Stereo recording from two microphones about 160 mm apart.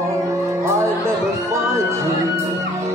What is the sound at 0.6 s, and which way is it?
Music, 15° right (ahead or behind).